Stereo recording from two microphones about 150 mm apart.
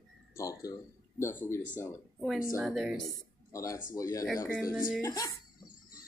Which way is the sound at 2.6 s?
Centre (ahead or behind).